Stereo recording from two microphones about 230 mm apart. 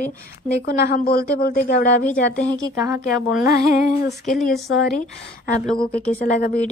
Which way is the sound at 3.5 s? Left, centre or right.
Left.